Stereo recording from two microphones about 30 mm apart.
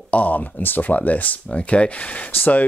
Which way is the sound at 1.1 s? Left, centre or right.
Left.